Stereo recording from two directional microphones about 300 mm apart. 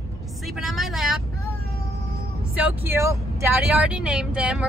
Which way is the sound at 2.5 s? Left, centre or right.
Centre.